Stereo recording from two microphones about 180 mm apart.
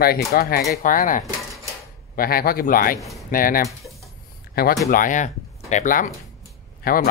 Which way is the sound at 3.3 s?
50° left (ahead or behind).